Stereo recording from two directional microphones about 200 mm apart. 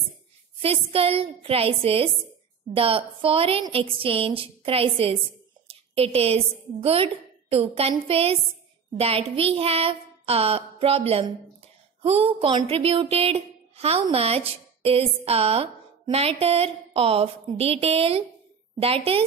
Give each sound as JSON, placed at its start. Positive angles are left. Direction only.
{"t": 0.6, "sound": "a woman's voice", "side_deg": -30}